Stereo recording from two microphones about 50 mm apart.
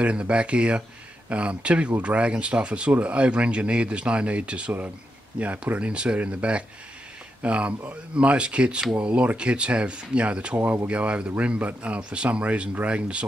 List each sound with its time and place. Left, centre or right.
0.0 s speech: right